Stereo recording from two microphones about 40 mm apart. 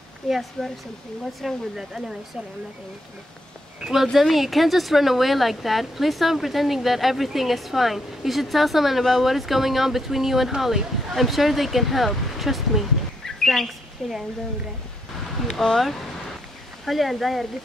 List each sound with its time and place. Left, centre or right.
0.3 s speech: centre
3.8 s speech: centre
13.2 s bird: centre
15.4 s speech: centre